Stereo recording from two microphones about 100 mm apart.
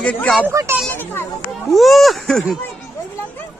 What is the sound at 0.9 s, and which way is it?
Speech, 20° left (ahead or behind).